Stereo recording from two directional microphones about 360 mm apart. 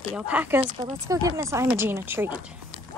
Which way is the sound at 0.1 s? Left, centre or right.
Centre.